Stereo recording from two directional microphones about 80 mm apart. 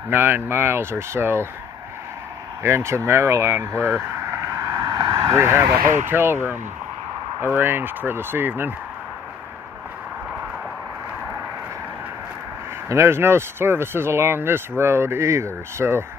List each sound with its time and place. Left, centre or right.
0.1 s speech: right
2.6 s speech: right
5.3 s speech: right
12.8 s speech: right